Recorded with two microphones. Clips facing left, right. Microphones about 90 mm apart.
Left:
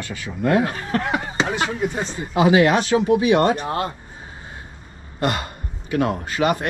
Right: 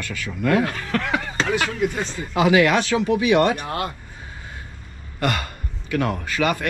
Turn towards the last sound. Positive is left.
turn(degrees=25)  # may be behind; listen again after turning